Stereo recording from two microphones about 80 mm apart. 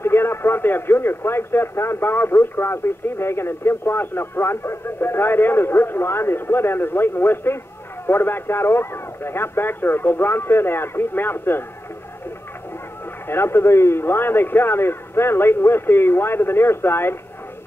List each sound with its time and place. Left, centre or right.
0.0 s speech: left
13.3 s speech: left